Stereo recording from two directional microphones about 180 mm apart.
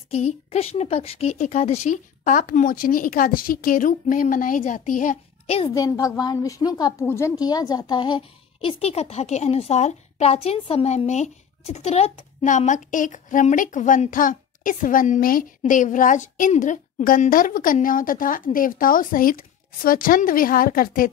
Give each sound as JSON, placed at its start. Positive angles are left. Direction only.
{"t": 0.1, "sound": "a woman's voice", "side_deg": 35}
{"t": 5.8, "sound": "a woman's voice", "side_deg": 20}